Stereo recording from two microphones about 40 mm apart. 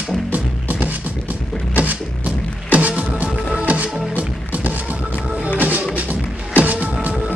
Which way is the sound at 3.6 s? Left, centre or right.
Right.